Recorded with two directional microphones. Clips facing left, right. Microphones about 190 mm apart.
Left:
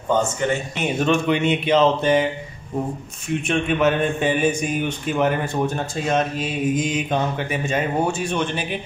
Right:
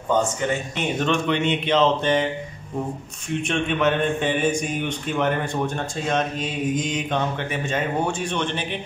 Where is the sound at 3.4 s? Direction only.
5° left (ahead or behind).